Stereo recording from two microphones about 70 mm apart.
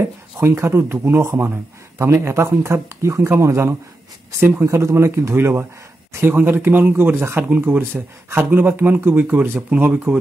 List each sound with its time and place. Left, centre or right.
0.4 s speech: right
4.6 s speech: right